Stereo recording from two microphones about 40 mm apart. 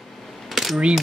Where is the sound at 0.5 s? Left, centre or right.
Centre.